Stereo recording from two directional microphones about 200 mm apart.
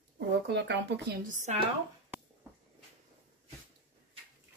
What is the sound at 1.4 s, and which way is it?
Speech, 35° right (ahead or behind).